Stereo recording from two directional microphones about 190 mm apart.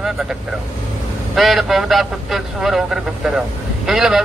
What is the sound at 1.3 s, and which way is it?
Speech, centre (ahead or behind).